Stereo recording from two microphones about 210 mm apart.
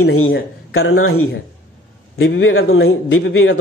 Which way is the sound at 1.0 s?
90° left.